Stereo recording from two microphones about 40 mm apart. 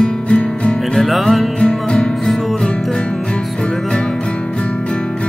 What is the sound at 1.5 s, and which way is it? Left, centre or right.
Music, left.